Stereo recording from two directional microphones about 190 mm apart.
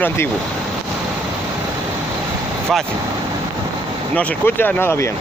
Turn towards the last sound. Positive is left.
turn(degrees=15)  # may be behind; listen again after turning